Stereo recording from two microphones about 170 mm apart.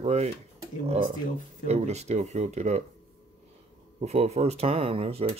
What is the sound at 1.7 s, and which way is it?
Speech, 40° right (ahead or behind).